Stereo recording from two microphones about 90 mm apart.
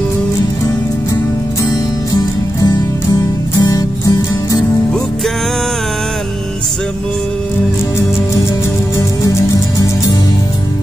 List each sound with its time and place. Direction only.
2.1 s music: 45° left (ahead or behind)
8.9 s music: 40° left (ahead or behind)